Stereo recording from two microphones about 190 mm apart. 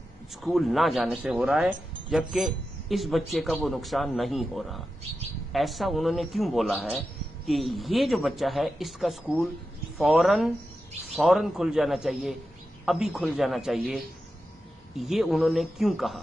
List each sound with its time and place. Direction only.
0.4 s speech: centre (ahead or behind)